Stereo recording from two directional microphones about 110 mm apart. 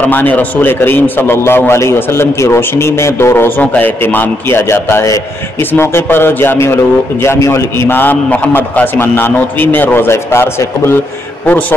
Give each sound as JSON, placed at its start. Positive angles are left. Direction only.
{"t": 0.0, "sound": "a man's voice", "side_deg": 15}